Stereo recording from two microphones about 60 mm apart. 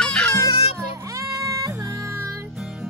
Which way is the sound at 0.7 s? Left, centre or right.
Right.